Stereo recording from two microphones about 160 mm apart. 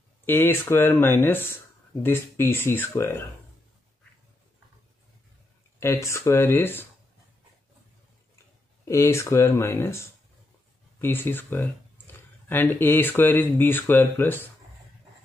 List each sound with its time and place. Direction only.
0.2 s speech: 15° left (ahead or behind)
5.8 s speech: 20° left (ahead or behind)
8.8 s speech: 20° left (ahead or behind)